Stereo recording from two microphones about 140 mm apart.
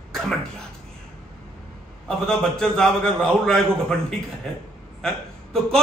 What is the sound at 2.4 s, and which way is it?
A man's voice, 5° left (ahead or behind).